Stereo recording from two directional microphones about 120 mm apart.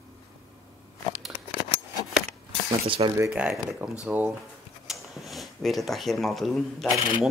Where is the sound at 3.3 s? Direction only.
5° right (ahead or behind).